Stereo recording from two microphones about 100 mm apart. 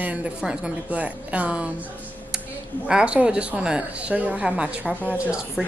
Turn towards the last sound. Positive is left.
turn(degrees=-10)  # may be behind; listen again after turning